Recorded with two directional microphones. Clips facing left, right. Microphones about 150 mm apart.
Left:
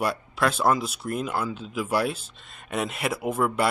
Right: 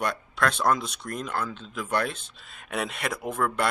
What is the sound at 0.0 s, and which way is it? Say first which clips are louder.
Speech: left 2 dB; 5° left (ahead or behind).